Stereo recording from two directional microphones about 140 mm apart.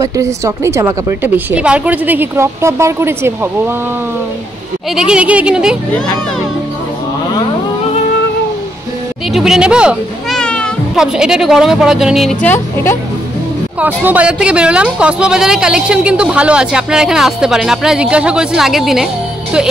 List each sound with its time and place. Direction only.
0.0 s a woman's voice: 20° right (ahead or behind)
4.9 s a woman's voice: 5° right (ahead or behind)
9.3 s speech: 5° right (ahead or behind)
10.4 s a sound: 5° left (ahead or behind)
11.0 s a woman's voice: 5° right (ahead or behind)
12.4 s a woman's voice: 15° left (ahead or behind)
13.7 s a woman's voice: 10° right (ahead or behind)